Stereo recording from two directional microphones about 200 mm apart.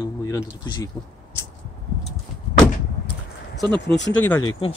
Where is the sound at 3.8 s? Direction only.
60° left (ahead or behind).